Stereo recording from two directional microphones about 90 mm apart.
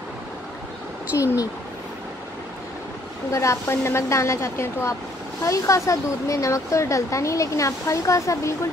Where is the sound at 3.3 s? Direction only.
35° left (ahead or behind).